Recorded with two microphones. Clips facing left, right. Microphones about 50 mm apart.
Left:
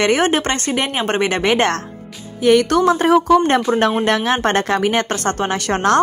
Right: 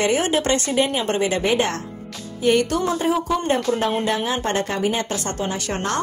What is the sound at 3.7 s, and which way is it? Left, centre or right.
Speech, left.